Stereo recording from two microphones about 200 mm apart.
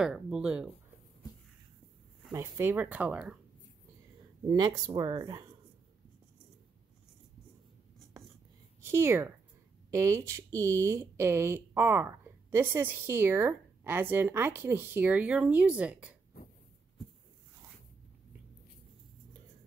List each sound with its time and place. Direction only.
0.0 s speech: 5° right (ahead or behind)
2.3 s speech: 15° right (ahead or behind)
4.5 s speech: 20° right (ahead or behind)
8.8 s speech: 10° right (ahead or behind)